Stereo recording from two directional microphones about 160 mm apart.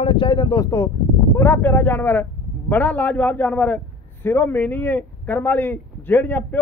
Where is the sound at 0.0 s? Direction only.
30° left (ahead or behind).